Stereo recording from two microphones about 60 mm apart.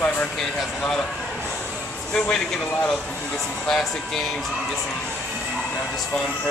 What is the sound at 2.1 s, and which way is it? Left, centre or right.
Speech, centre.